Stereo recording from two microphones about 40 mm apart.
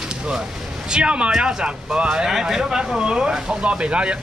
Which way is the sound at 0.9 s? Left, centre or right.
Right.